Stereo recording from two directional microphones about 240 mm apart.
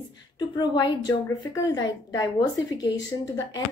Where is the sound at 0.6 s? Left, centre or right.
Centre.